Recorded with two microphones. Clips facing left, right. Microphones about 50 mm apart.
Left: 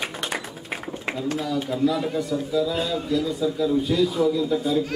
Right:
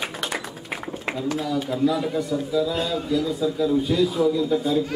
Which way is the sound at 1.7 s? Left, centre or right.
Centre.